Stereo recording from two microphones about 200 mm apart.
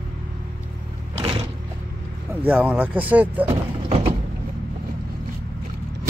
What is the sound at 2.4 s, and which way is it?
Speech, 10° right (ahead or behind).